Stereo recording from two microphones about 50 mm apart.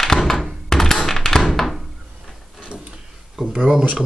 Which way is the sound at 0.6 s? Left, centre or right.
Centre.